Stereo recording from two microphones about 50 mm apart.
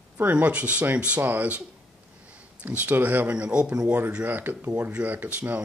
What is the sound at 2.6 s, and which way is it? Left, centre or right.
Speech, right.